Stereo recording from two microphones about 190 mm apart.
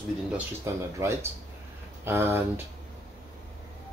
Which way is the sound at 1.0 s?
15° right (ahead or behind).